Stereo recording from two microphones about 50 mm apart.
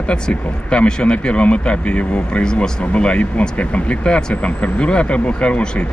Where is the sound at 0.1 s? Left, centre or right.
Centre.